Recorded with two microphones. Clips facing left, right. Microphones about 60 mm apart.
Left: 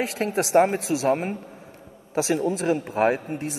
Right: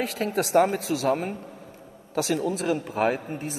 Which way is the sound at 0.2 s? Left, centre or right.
Left.